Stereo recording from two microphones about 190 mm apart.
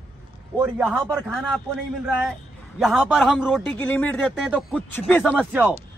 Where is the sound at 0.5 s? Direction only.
10° right (ahead or behind).